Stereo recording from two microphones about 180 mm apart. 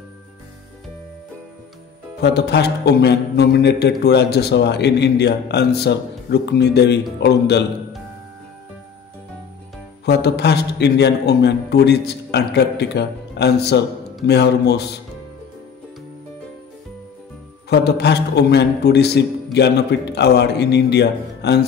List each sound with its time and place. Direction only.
2.1 s speech: 65° left (ahead or behind)
10.0 s speech: 65° left (ahead or behind)
17.6 s speech: 65° left (ahead or behind)